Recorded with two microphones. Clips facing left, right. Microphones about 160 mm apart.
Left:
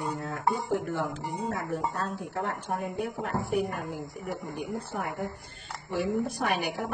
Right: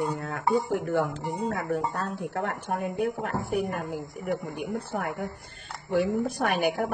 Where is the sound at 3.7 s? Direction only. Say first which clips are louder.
Right 3 dB; 50° right (ahead or behind).